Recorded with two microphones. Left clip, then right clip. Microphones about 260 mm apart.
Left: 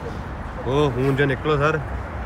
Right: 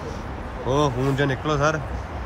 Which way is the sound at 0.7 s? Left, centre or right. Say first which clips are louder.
Left 1 dB; centre.